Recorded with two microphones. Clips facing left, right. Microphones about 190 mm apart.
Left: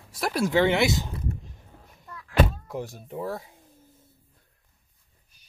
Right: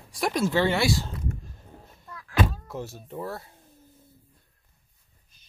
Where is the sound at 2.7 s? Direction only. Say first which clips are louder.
Left 2 dB; 15° left (ahead or behind).